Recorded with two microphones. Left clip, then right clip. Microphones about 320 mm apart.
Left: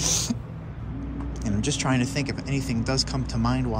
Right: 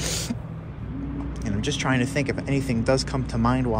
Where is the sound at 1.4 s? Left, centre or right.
Centre.